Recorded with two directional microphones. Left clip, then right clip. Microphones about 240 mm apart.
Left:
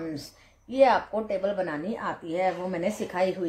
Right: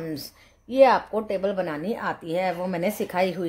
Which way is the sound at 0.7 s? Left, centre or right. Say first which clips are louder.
Right 3 dB; right.